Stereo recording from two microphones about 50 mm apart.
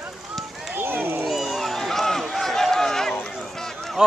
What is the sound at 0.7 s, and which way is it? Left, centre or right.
Run, right.